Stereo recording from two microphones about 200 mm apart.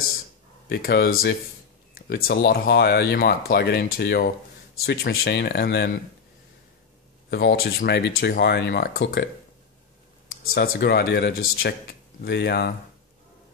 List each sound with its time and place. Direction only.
0.7 s speech: 50° left (ahead or behind)
7.2 s speech: 60° left (ahead or behind)
10.5 s speech: 55° left (ahead or behind)